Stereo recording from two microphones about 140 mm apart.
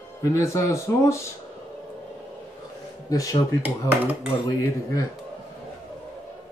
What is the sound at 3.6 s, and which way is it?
Speech, 10° right (ahead or behind).